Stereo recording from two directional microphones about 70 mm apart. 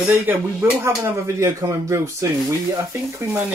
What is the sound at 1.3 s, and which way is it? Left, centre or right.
Speech, right.